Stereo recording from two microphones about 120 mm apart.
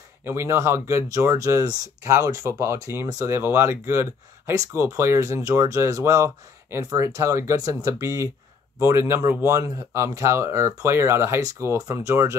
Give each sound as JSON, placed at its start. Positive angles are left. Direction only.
{"t": 0.2, "sound": "speech", "side_deg": -20}